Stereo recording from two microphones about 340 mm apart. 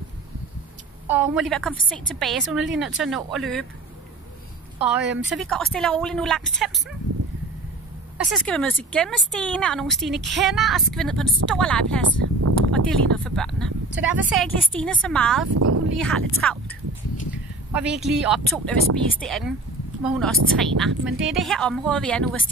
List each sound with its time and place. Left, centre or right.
1.0 s speech: centre
5.3 s speech: centre
8.2 s speech: centre
15.5 s speech: right
16.0 s speech: centre
17.3 s a sound: centre
18.2 s speech: centre